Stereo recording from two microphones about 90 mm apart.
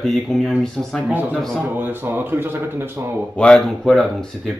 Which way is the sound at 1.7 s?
20° right (ahead or behind).